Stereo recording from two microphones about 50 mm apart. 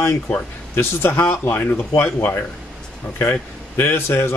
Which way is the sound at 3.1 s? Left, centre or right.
Left.